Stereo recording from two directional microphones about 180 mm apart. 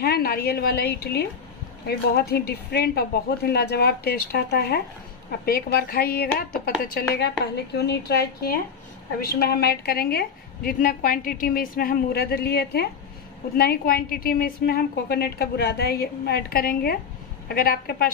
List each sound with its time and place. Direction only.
0.0 s a woman's voice: 60° left (ahead or behind)